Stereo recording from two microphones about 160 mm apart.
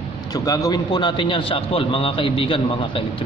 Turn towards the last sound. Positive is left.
turn(degrees=35)  # may be behind; listen again after turning